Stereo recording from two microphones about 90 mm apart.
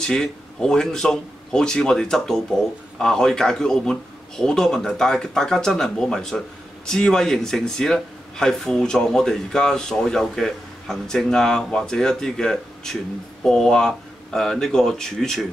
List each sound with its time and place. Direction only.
0.0 s speech: 5° left (ahead or behind)